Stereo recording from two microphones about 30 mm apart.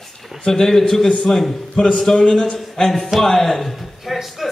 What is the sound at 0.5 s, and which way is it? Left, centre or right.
A man's voice, centre.